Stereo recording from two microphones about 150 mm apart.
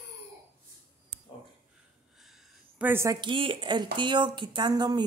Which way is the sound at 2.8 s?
15° right (ahead or behind).